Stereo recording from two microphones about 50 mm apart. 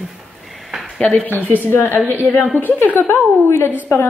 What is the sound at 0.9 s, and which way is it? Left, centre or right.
A woman's voice, left.